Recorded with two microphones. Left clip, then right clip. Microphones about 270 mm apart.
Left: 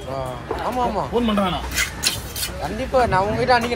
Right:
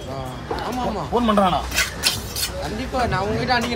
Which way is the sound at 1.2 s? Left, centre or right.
Centre.